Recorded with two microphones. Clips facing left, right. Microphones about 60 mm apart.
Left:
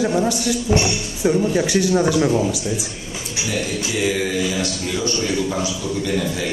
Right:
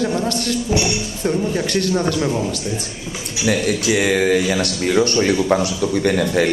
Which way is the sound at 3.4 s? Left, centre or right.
Right.